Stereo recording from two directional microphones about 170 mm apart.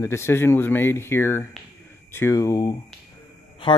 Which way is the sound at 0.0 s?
15° left (ahead or behind).